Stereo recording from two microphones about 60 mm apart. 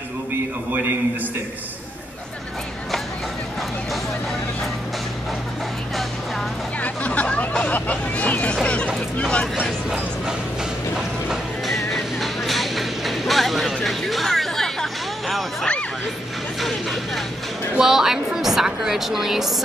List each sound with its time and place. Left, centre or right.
0.3 s a sound: right
6.8 s hubbub: left
8.6 s a sound: centre
11.0 s music: centre
16.6 s music: centre
17.7 s a woman's voice: centre